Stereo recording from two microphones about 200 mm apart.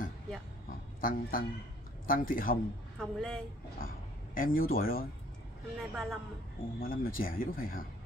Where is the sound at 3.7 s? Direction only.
45° left (ahead or behind).